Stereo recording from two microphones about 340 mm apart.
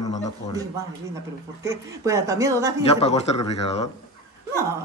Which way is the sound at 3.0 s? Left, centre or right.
Centre.